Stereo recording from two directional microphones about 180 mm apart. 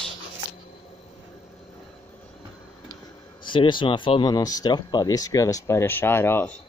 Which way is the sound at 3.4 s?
25° left (ahead or behind).